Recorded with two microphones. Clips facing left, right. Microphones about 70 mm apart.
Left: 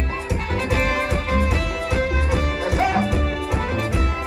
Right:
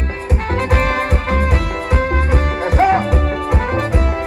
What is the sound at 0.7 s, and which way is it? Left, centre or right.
Music, right.